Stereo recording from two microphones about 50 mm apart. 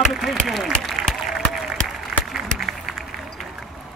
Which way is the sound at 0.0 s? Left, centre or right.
Centre.